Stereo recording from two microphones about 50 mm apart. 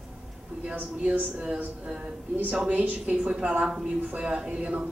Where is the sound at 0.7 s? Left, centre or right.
Right.